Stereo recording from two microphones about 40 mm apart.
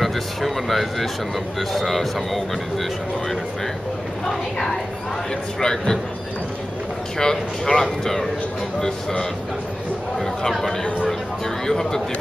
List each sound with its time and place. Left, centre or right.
0.0 s speech: centre
5.6 s speech: centre
7.2 s speech: centre
10.1 s speech: centre
11.6 s speech: centre